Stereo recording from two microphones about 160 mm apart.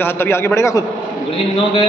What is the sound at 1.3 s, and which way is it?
Speech, 35° left (ahead or behind).